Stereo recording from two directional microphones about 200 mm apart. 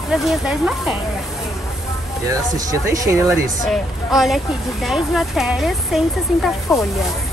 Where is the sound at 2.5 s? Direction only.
15° right (ahead or behind).